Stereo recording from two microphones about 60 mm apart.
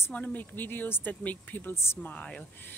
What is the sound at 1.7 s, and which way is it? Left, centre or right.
Speech, left.